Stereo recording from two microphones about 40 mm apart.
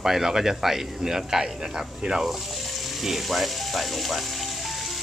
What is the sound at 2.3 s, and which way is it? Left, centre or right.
Music, centre.